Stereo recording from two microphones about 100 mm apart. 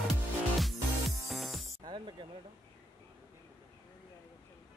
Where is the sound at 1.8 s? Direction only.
50° right (ahead or behind).